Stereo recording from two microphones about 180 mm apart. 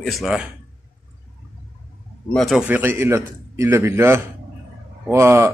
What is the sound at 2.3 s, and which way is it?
A man's voice, centre (ahead or behind).